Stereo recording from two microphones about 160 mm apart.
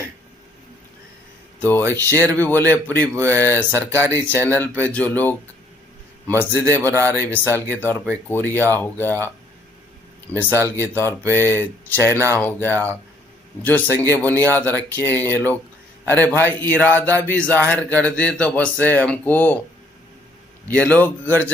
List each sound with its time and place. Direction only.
1.6 s a man's voice: 10° left (ahead or behind)
10.8 s a man's voice: 15° left (ahead or behind)
13.8 s speech: 20° right (ahead or behind)
14.1 s a man's voice: 10° left (ahead or behind)
20.6 s a man's voice: 10° left (ahead or behind)